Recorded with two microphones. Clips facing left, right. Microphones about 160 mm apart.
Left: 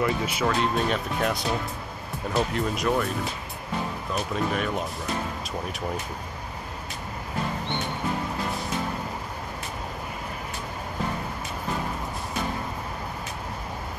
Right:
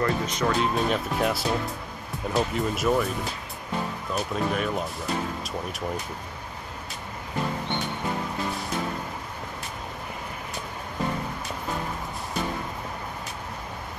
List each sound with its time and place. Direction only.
0.0 s speech: 10° left (ahead or behind)
4.1 s speech: centre (ahead or behind)